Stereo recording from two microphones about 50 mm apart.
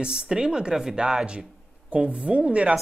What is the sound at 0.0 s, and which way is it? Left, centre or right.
Speech, centre.